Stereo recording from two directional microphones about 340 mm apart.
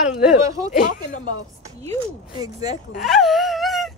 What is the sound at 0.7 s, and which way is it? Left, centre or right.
Speech, left.